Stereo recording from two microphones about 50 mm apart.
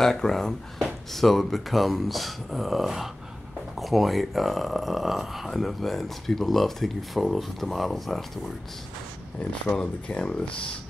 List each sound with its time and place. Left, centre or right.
0.0 s speech: centre
9.4 s speech: left